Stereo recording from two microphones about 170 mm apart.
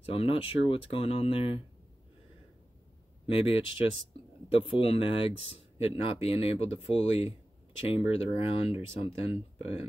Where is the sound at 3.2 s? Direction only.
35° left (ahead or behind).